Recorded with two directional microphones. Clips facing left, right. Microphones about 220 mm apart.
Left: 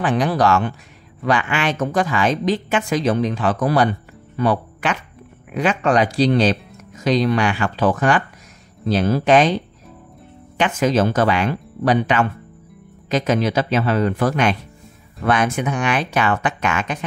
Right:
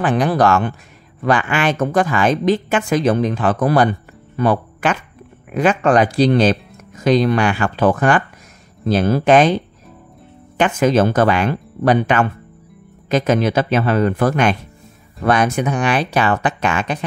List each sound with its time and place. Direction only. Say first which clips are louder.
0.0 s a woman's voice: right 2 dB; 50° right (ahead or behind)
10.6 s a woman's voice: right 3 dB; 55° right (ahead or behind)
15.2 s speech: right 3 dB; 40° right (ahead or behind)